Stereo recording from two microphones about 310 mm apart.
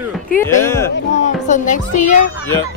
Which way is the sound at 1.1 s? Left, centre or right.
Left.